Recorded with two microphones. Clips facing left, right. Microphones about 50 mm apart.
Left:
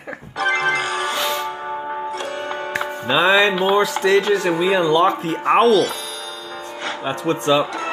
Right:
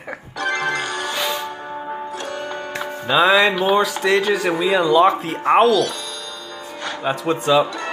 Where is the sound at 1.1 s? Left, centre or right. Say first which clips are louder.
Left 1 dB; centre.